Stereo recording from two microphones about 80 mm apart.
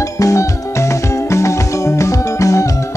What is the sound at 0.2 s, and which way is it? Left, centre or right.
Music, left.